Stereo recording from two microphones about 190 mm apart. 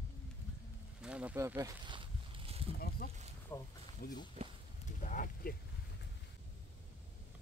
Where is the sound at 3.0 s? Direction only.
50° left (ahead or behind).